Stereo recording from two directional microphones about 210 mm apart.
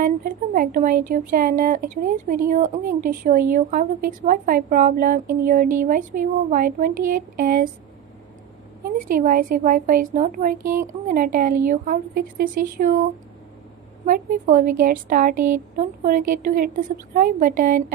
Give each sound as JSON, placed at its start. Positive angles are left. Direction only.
{"t": 0.0, "sound": "a woman's voice", "side_deg": -40}
{"t": 8.8, "sound": "a woman's voice", "side_deg": -40}
{"t": 14.0, "sound": "a woman's voice", "side_deg": -40}